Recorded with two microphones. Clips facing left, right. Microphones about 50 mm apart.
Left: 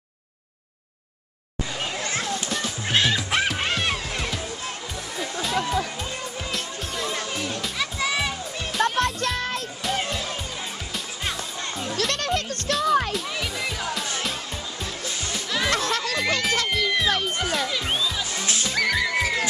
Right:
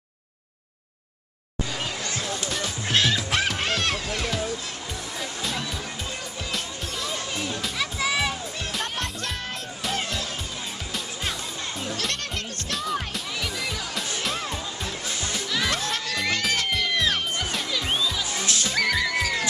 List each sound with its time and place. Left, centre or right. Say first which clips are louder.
2.5 s music: even; centre
7.6 s music: right 1 dB; centre
9.0 s music: left 6 dB; left
12.0 s music: left 5 dB; left
12.7 s music: left 7 dB; centre
15.7 s music: left 4 dB; left
16.1 s music: right 1 dB; centre